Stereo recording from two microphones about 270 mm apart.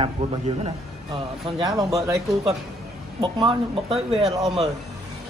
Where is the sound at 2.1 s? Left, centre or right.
Centre.